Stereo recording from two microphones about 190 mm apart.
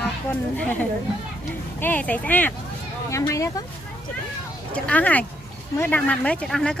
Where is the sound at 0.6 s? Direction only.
10° left (ahead or behind).